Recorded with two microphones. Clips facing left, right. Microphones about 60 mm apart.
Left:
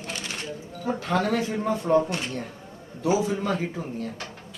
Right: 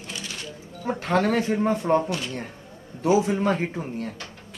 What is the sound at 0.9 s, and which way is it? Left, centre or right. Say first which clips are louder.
A man's voice: right 3 dB; right.